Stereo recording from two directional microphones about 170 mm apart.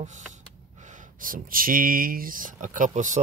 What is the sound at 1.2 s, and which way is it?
Speech, 55° right (ahead or behind).